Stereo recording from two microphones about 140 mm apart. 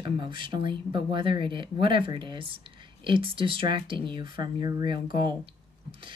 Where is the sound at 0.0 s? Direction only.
35° right (ahead or behind).